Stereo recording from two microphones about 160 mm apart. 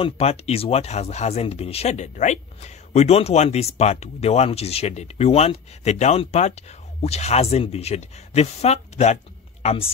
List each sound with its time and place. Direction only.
0.0 s speech: 40° left (ahead or behind)